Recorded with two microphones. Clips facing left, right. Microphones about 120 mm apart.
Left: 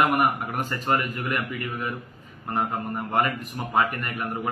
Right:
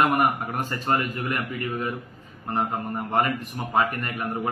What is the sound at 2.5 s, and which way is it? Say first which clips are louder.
A man's voice: even; 20° right (ahead or behind).